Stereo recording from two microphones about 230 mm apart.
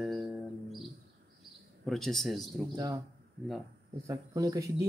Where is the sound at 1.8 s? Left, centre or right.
Centre.